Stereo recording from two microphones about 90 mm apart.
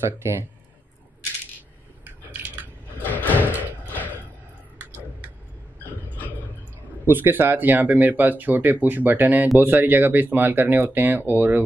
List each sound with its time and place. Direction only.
0.2 s speech: 30° right (ahead or behind)
3.0 s door: 20° left (ahead or behind)
3.3 s music: 20° right (ahead or behind)
3.8 s music: 20° left (ahead or behind)
6.1 s a sound: 20° left (ahead or behind)
7.1 s speech: 25° right (ahead or behind)